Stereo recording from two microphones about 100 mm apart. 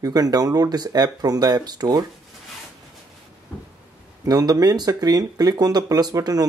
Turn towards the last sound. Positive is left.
turn(degrees=-40)  # may be behind; listen again after turning